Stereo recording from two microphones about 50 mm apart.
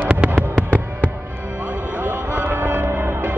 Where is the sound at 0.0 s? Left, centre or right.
Right.